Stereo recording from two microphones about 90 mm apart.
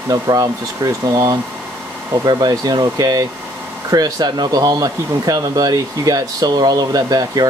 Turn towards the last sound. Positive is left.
turn(degrees=-45)  # may be behind; listen again after turning